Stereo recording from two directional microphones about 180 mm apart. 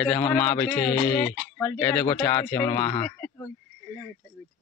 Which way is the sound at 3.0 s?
10° left (ahead or behind).